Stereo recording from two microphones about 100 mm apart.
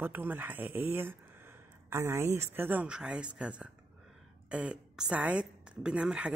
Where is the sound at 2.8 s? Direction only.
10° right (ahead or behind).